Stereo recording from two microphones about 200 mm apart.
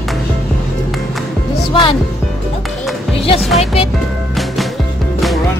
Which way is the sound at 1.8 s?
25° left (ahead or behind).